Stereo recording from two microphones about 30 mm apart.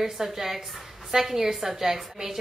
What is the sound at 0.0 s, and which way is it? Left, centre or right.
A woman's voice, centre.